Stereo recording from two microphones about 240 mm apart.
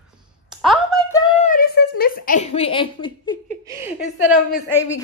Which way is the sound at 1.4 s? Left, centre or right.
Left.